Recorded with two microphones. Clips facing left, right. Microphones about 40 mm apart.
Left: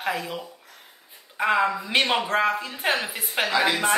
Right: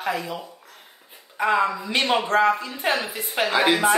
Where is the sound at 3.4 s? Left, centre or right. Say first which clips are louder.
Right 2 dB; centre.